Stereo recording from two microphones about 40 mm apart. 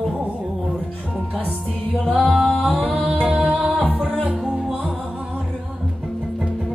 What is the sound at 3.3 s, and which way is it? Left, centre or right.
Music, right.